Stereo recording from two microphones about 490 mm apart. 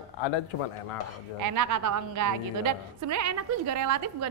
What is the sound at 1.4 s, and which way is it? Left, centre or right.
A woman's voice, right.